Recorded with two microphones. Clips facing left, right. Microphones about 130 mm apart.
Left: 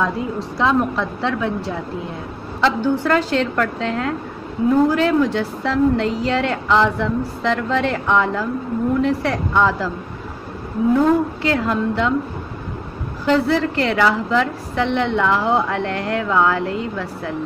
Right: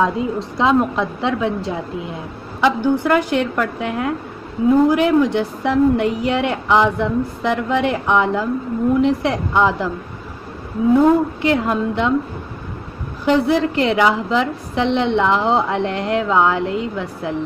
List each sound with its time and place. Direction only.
0.0 s a woman's voice: 20° right (ahead or behind)
10.9 s a woman's voice: 20° right (ahead or behind)
13.2 s a woman's voice: 15° right (ahead or behind)